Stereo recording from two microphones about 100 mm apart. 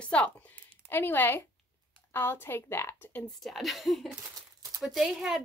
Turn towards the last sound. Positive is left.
turn(degrees=0)  # may be behind; listen again after turning